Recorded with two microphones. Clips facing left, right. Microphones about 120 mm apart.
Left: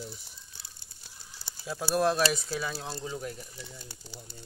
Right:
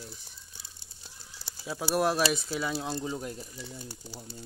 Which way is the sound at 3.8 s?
10° right (ahead or behind).